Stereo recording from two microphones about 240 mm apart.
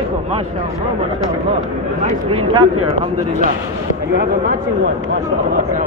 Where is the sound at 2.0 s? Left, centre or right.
Right.